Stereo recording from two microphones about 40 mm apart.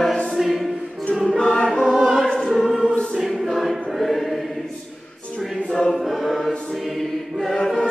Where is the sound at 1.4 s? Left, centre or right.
Left.